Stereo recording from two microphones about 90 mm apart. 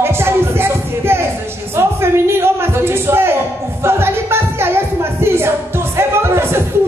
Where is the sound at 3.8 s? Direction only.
25° right (ahead or behind).